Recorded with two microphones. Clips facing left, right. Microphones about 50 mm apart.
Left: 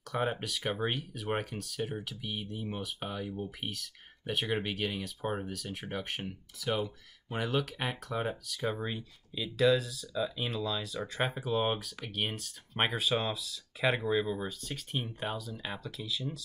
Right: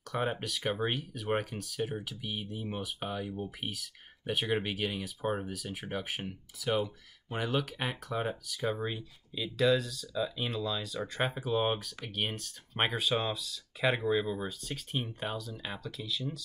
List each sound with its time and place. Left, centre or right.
0.1 s speech: centre